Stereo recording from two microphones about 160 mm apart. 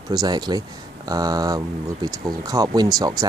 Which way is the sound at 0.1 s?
25° right (ahead or behind).